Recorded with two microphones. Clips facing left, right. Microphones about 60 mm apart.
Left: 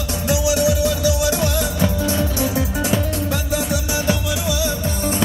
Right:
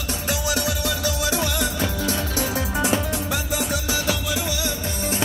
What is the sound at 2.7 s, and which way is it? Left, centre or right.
Music, right.